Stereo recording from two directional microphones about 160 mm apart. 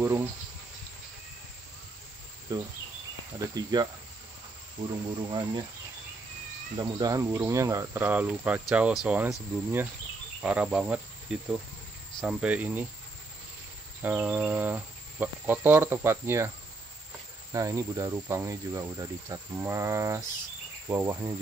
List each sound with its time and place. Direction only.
0.0 s speech: 15° right (ahead or behind)
2.5 s speech: 25° right (ahead or behind)
6.8 s speech: 25° right (ahead or behind)
14.0 s speech: 10° right (ahead or behind)